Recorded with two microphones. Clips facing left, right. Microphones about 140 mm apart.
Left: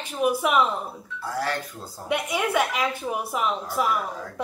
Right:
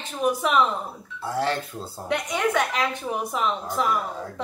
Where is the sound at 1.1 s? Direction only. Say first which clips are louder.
Right 3 dB; 25° right (ahead or behind).